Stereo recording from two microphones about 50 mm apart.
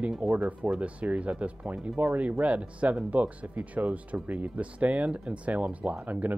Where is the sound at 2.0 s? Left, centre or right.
Right.